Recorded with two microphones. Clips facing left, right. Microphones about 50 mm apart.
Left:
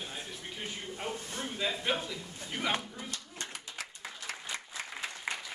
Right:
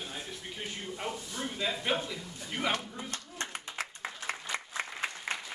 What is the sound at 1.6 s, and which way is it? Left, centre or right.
Speech, centre.